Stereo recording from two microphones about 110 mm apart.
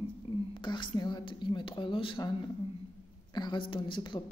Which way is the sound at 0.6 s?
45° left (ahead or behind).